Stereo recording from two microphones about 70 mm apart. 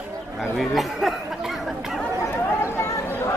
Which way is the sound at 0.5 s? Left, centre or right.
Centre.